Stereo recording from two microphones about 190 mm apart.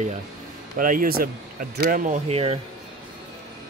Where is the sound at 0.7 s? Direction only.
45° right (ahead or behind).